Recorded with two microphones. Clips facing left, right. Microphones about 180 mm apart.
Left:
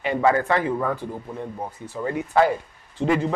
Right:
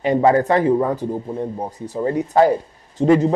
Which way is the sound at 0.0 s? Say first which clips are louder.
Right 5 dB; 35° right (ahead or behind).